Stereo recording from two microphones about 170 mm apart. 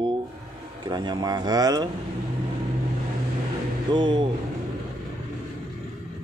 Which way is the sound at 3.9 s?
25° right (ahead or behind).